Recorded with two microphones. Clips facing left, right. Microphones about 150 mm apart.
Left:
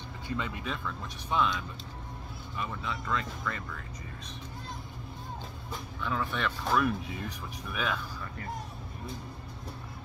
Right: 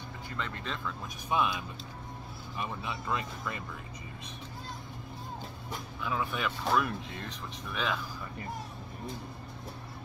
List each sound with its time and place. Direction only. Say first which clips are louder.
0.4 s speech: even; 10° left (ahead or behind)
1.3 s speech: left 1 dB; 15° right (ahead or behind)
5.9 s speech: left 1 dB; 5° right (ahead or behind)